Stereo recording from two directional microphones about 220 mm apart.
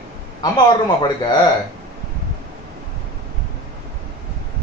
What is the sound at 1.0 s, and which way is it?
Speech, 20° left (ahead or behind).